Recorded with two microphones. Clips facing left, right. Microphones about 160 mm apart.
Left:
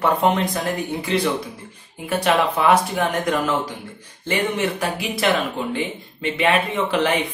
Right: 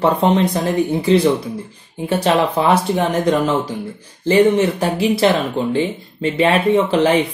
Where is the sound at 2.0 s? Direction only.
30° right (ahead or behind).